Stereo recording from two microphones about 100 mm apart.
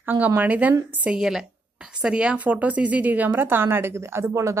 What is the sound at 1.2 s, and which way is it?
A woman's voice, 5° right (ahead or behind).